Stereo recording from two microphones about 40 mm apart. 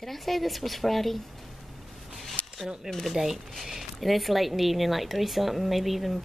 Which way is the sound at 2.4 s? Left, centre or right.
Right.